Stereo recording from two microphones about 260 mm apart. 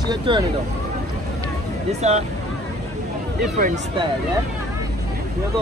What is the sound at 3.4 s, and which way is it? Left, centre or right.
Speech, right.